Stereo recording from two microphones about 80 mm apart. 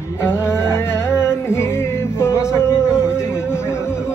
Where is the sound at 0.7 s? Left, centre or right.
Left.